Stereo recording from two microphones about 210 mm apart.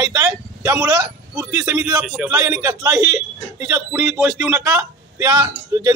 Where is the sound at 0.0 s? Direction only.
15° right (ahead or behind).